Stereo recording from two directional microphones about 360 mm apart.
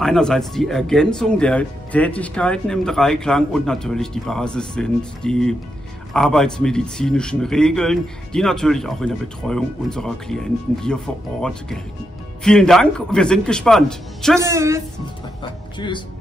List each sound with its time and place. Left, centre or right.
0.0 s speech: centre
12.4 s a woman's voice: centre